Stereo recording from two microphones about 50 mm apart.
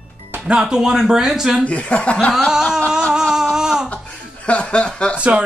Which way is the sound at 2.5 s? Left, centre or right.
Centre.